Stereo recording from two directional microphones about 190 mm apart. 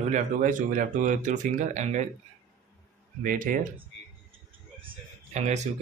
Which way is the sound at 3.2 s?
45° right (ahead or behind).